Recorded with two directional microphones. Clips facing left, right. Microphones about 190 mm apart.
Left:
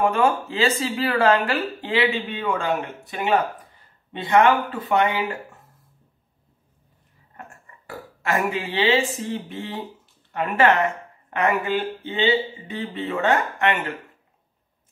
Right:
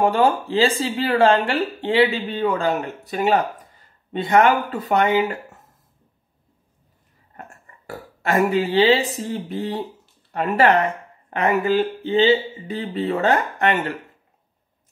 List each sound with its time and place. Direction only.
0.0 s speech: 35° right (ahead or behind)
7.3 s speech: 35° right (ahead or behind)